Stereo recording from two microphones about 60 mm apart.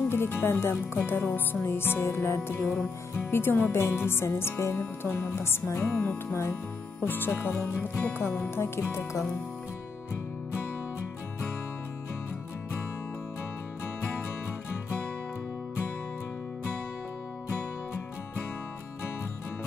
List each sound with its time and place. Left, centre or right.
0.1 s music: left
7.0 s music: left